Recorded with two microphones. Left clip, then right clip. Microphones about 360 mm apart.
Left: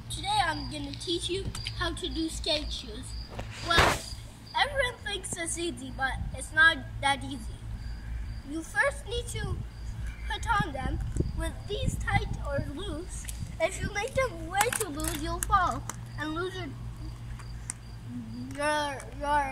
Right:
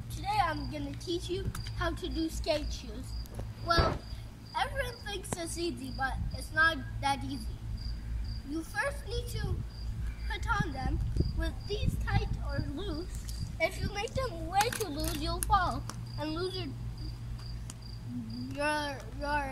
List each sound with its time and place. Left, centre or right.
0.1 s speech: centre
3.7 s speech: left
4.5 s a child's voice: centre
8.5 s a child's voice: centre
12.0 s a child's voice: centre
18.5 s a child's voice: centre